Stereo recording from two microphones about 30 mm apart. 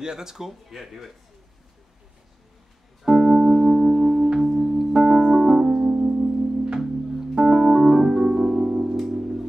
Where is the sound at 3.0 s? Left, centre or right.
Centre.